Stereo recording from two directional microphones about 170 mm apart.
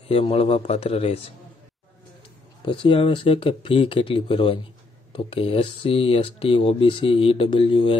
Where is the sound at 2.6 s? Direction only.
30° left (ahead or behind).